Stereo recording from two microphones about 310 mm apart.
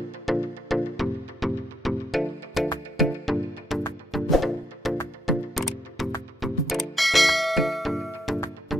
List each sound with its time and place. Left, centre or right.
0.2 s music: centre